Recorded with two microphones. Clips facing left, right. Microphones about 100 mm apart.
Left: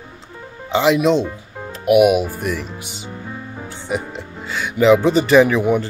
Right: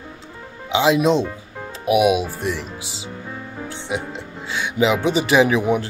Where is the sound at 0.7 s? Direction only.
5° right (ahead or behind).